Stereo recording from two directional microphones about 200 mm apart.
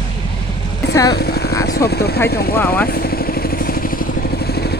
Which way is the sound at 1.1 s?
55° left (ahead or behind).